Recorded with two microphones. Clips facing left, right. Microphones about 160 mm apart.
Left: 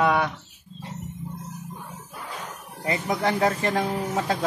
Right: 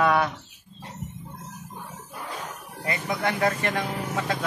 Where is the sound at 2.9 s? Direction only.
35° left (ahead or behind).